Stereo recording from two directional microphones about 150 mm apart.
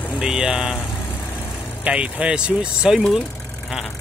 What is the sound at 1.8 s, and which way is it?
Speech, 10° right (ahead or behind).